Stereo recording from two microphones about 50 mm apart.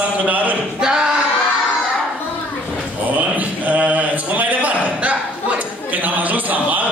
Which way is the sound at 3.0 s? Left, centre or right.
Right.